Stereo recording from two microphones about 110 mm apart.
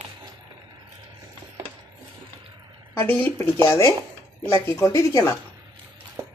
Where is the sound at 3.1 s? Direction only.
15° left (ahead or behind).